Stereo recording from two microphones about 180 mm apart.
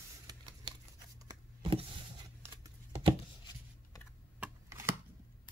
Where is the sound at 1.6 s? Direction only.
30° right (ahead or behind).